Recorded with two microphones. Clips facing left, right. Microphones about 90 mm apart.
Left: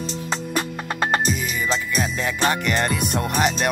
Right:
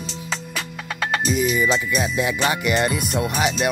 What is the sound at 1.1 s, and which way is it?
Music, 35° left (ahead or behind).